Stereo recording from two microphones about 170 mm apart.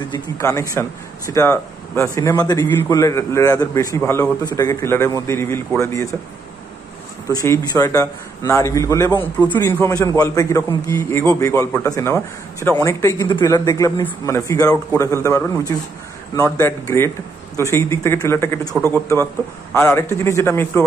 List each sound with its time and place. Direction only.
0.1 s speech: 15° left (ahead or behind)
7.2 s a man's voice: 15° left (ahead or behind)